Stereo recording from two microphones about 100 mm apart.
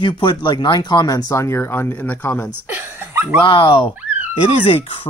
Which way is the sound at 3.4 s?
55° left (ahead or behind).